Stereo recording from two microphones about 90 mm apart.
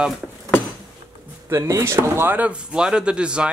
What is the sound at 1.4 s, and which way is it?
Speech, 30° right (ahead or behind).